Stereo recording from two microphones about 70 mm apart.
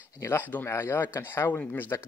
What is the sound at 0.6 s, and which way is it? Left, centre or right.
Speech, left.